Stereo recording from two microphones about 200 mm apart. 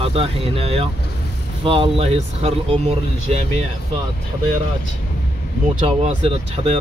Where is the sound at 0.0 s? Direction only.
30° right (ahead or behind).